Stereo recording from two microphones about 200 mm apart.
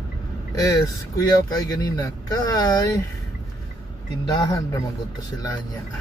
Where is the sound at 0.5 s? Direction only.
15° left (ahead or behind).